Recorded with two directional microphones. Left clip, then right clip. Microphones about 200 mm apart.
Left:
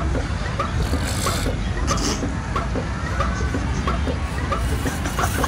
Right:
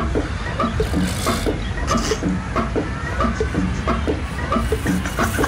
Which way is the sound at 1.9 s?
20° left (ahead or behind).